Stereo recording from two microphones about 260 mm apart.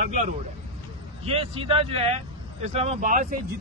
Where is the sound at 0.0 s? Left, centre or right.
Right.